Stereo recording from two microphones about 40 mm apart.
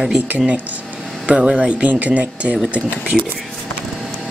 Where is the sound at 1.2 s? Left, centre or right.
Right.